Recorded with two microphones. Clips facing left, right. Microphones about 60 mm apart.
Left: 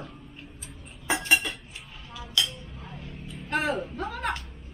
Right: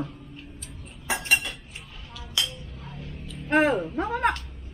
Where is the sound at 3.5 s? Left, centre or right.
Right.